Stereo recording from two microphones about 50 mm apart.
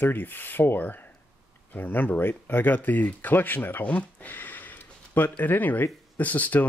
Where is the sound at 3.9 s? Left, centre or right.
Left.